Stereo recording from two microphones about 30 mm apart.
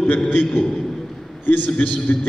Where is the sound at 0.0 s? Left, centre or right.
Left.